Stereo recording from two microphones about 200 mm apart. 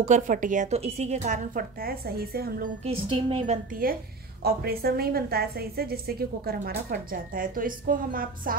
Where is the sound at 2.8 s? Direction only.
25° right (ahead or behind).